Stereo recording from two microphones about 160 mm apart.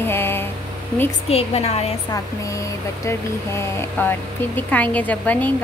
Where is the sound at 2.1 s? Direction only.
20° left (ahead or behind).